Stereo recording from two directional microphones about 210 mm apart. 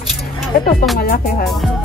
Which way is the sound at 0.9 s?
45° left (ahead or behind).